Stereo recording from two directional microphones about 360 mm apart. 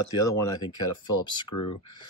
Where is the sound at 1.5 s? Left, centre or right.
Left.